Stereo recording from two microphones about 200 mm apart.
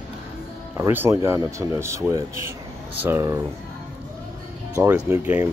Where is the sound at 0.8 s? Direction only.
10° right (ahead or behind).